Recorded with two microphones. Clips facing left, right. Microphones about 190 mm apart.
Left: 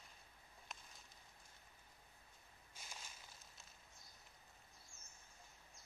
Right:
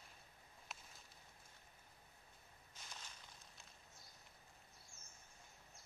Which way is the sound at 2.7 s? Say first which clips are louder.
Even; 10° left (ahead or behind).